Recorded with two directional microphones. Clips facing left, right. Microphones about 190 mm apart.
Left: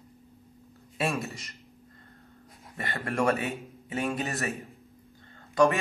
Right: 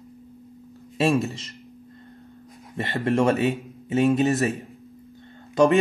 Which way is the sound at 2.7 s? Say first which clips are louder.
Right 9 dB; 25° right (ahead or behind).